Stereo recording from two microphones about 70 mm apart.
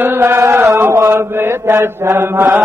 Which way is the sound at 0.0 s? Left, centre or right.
Right.